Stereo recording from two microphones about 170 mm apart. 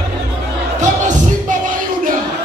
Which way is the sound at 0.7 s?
45° right (ahead or behind).